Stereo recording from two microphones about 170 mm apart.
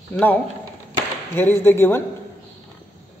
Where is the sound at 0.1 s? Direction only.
10° left (ahead or behind).